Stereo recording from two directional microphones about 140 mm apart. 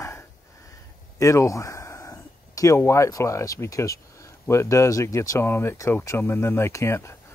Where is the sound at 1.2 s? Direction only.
20° left (ahead or behind).